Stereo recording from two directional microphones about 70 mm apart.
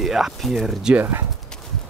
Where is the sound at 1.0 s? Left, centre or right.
Right.